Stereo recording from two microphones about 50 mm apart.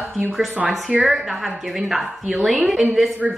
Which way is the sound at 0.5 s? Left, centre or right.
Right.